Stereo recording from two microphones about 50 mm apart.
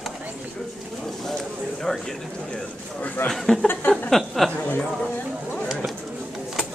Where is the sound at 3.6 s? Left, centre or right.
Left.